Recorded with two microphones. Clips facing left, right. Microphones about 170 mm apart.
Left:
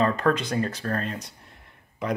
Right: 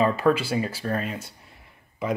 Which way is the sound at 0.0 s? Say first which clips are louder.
Right 2 dB; 5° right (ahead or behind).